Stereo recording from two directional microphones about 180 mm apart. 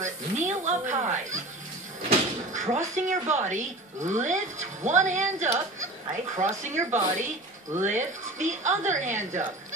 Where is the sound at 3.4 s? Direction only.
40° right (ahead or behind).